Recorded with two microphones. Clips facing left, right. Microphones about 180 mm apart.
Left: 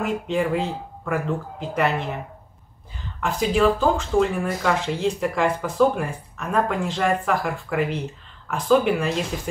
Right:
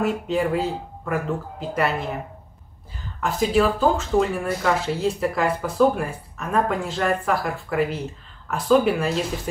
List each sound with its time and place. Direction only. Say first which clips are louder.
0.0 s speech: right 1 dB; 5° right (ahead or behind)
3.2 s speech: right 1 dB; centre (ahead or behind)